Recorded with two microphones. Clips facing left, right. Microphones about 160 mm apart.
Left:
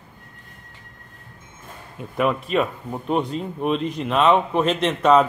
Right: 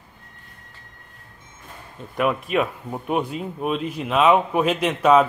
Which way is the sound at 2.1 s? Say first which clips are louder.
Left 1 dB; centre (ahead or behind).